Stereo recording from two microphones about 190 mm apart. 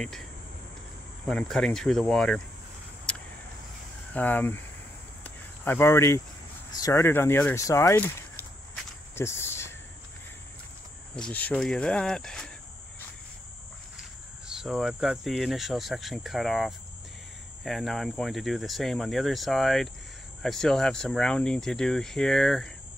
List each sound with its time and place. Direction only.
1.2 s speech: centre (ahead or behind)
3.1 s a sound: 5° left (ahead or behind)
4.1 s speech: 10° left (ahead or behind)
5.2 s cricket: 10° left (ahead or behind)
6.8 s speech: 15° left (ahead or behind)
9.1 s cricket: 15° left (ahead or behind)
11.1 s speech: 5° left (ahead or behind)
14.5 s speech: 5° right (ahead or behind)